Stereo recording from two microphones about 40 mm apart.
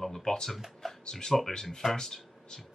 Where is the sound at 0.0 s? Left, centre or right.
Centre.